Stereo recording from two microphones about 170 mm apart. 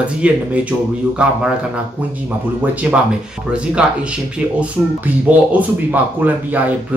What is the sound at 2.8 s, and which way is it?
Speech, 5° right (ahead or behind).